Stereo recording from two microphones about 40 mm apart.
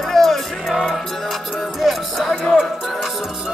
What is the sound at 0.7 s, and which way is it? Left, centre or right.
Music, centre.